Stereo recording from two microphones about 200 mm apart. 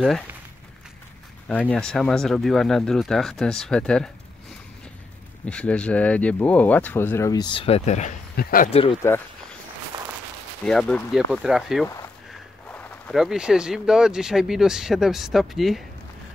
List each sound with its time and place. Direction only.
1.7 s speech: 5° left (ahead or behind)
5.4 s speech: 5° left (ahead or behind); by 8.1 s 35° left (ahead or behind)
8.4 s speech: 45° left (ahead or behind)
9.0 s speech: 15° left (ahead or behind)
9.9 s a sound: 20° right (ahead or behind)
10.6 s speech: 5° left (ahead or behind)